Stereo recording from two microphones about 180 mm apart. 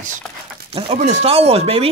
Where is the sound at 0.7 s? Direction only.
35° right (ahead or behind).